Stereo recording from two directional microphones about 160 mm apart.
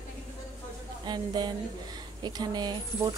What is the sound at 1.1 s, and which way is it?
A woman's voice, 25° right (ahead or behind).